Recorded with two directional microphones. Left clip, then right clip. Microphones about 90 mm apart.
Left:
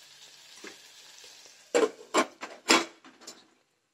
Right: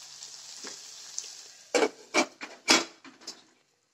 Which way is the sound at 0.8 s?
35° right (ahead or behind).